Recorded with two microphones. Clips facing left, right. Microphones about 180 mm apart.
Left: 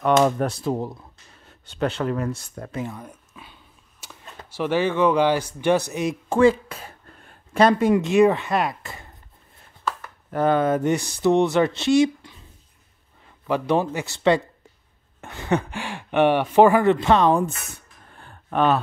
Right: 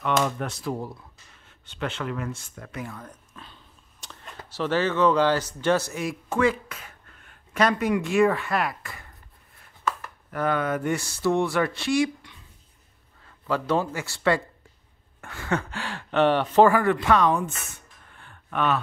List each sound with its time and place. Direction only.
0.0 s speech: 40° left (ahead or behind)
0.6 s speech: 25° left (ahead or behind)
1.4 s speech: 40° left (ahead or behind)
3.0 s a sound: 10° left (ahead or behind)
4.0 s speech: 10° left (ahead or behind)
10.3 s speech: 30° left (ahead or behind)